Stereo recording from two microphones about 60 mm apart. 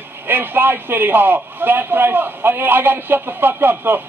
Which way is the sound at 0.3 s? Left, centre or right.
Right.